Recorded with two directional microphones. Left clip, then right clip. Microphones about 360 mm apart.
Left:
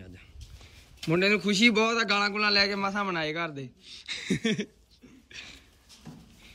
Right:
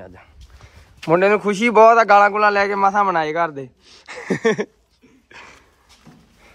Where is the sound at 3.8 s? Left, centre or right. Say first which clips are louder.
Right 4 dB; centre.